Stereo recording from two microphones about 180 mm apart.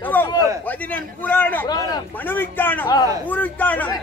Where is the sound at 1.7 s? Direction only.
20° left (ahead or behind).